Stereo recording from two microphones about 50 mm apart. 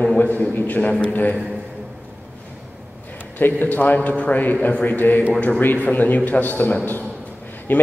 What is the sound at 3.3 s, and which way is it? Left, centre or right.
A man's voice, left.